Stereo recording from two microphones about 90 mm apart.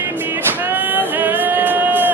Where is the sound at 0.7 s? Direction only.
20° right (ahead or behind).